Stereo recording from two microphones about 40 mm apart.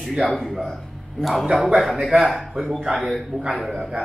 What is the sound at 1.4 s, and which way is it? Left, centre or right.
Speech, centre.